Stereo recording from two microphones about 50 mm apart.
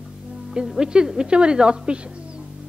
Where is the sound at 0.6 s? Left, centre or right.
Centre.